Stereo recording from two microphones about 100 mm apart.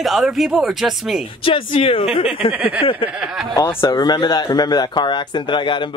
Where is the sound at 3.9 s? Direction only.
45° left (ahead or behind).